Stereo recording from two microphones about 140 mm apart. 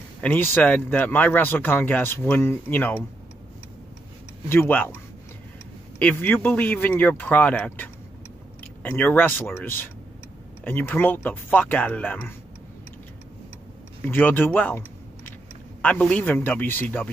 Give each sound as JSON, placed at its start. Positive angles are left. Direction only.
{"t": 0.2, "sound": "speech", "side_deg": 10}
{"t": 4.5, "sound": "speech", "side_deg": 15}
{"t": 5.9, "sound": "speech", "side_deg": 10}
{"t": 14.0, "sound": "speech", "side_deg": 15}
{"t": 15.8, "sound": "speech", "side_deg": 10}